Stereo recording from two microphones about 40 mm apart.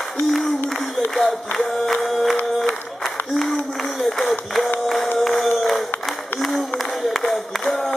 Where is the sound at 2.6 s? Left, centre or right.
Centre.